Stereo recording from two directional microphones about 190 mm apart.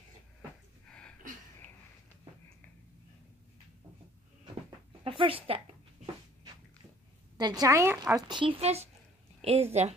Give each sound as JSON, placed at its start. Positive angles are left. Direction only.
{"t": 0.8, "sound": "a sound", "side_deg": 5}
{"t": 4.6, "sound": "dog", "side_deg": -25}
{"t": 7.3, "sound": "a woman's voice", "side_deg": -20}